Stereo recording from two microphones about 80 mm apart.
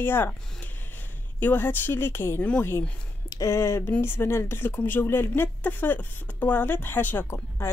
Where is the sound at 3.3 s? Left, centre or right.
Left.